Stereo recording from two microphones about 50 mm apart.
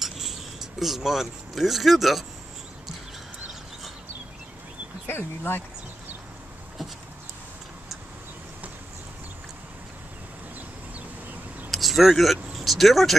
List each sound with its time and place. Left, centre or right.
0.0 s a sound: centre
5.0 s speech: left
11.7 s speech: centre